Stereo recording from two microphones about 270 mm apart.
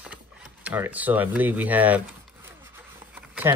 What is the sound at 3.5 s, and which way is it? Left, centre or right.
Speech, centre.